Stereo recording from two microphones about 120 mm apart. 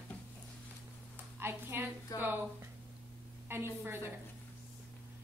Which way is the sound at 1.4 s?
20° right (ahead or behind).